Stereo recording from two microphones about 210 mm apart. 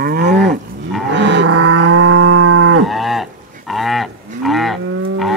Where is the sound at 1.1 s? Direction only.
60° right (ahead or behind); by 2.8 s 90° right.